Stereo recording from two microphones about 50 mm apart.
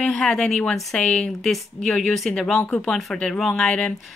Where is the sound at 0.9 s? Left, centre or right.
Centre.